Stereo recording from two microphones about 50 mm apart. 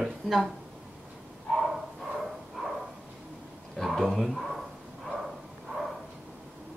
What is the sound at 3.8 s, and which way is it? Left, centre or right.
Speech, centre.